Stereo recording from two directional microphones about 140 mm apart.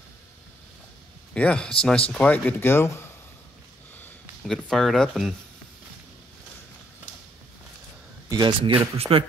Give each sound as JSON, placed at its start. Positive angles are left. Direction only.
{"t": 1.3, "sound": "speech", "side_deg": 5}
{"t": 4.5, "sound": "speech", "side_deg": 0}
{"t": 8.3, "sound": "speech", "side_deg": -35}